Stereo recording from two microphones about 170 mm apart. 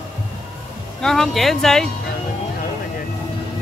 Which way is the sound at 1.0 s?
5° left (ahead or behind).